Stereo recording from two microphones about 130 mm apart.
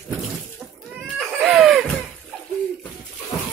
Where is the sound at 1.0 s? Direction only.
5° left (ahead or behind).